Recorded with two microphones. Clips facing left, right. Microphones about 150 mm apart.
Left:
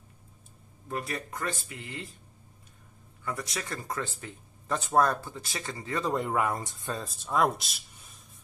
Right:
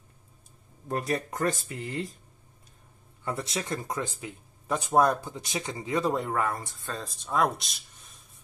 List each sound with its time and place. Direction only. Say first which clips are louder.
0.8 s speech: right 5 dB; 40° right (ahead or behind)
3.3 s speech: right 4 dB; 25° right (ahead or behind)
6.3 s speech: left 1 dB; 15° left (ahead or behind)
7.0 s speech: even; centre (ahead or behind)